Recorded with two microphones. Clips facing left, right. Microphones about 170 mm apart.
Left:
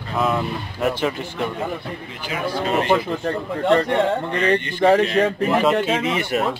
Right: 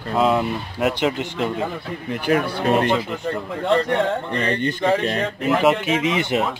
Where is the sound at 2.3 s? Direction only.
55° right (ahead or behind).